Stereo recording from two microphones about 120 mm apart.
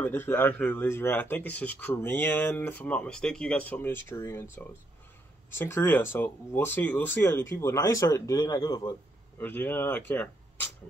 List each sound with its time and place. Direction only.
0.0 s speech: 15° left (ahead or behind); by 8.9 s 35° left (ahead or behind)
9.4 s speech: 15° left (ahead or behind)